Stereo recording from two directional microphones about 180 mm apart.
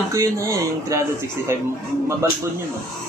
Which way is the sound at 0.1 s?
15° right (ahead or behind).